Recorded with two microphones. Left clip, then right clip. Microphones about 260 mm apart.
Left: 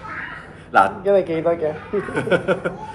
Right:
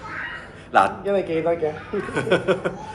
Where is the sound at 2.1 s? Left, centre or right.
Centre.